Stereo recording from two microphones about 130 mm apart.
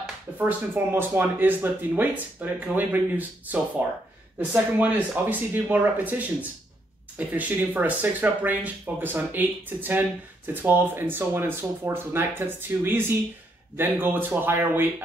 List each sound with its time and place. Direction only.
0.4 s speech: 15° right (ahead or behind)